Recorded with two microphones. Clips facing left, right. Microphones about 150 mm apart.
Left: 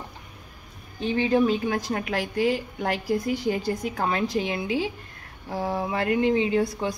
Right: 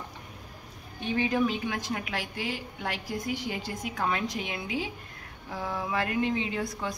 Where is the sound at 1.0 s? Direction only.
30° left (ahead or behind).